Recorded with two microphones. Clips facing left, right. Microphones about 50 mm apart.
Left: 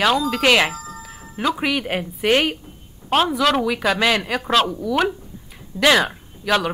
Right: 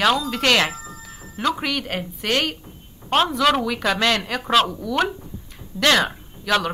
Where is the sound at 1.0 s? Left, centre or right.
Centre.